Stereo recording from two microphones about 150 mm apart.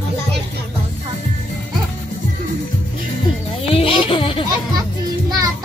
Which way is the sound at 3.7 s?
35° left (ahead or behind).